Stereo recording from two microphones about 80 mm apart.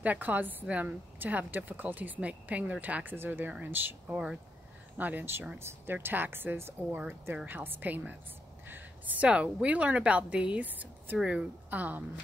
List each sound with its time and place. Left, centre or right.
0.0 s a woman's voice: right